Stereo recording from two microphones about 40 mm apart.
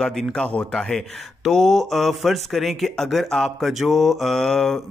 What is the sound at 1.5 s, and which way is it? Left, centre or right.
Speech, centre.